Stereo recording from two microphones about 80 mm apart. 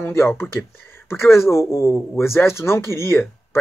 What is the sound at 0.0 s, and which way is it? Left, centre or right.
Speech, left.